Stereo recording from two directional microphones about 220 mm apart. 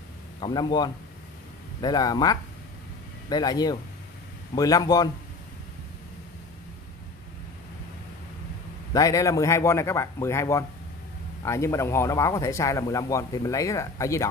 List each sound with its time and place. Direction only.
0.4 s speech: 20° left (ahead or behind)
8.9 s speech: 15° left (ahead or behind)